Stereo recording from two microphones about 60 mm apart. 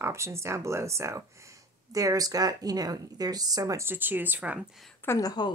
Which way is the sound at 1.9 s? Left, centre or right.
Right.